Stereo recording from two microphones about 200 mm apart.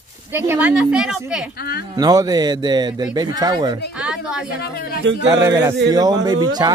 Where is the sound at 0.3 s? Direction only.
10° right (ahead or behind).